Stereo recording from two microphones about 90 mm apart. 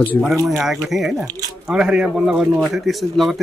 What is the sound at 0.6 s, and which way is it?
Speech, 5° right (ahead or behind).